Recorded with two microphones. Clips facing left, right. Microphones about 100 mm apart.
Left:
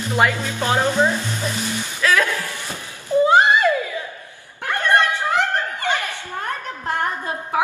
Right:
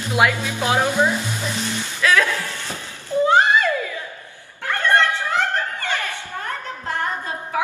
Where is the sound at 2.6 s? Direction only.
15° left (ahead or behind).